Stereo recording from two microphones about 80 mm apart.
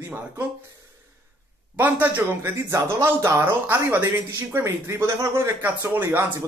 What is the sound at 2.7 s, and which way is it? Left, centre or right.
Speech, right.